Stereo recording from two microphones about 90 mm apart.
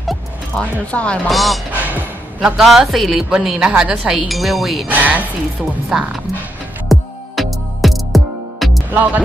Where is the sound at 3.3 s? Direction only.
10° right (ahead or behind).